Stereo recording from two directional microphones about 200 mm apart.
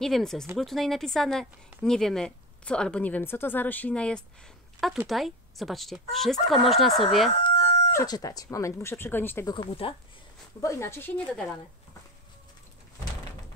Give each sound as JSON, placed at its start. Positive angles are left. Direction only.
{"t": 0.0, "sound": "speech", "side_deg": 0}
{"t": 7.2, "sound": "crowing", "side_deg": 30}
{"t": 7.9, "sound": "speech", "side_deg": 15}
{"t": 9.5, "sound": "speech", "side_deg": 25}
{"t": 10.6, "sound": "speech", "side_deg": 15}